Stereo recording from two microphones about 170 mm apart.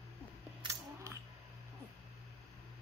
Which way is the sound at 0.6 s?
20° right (ahead or behind).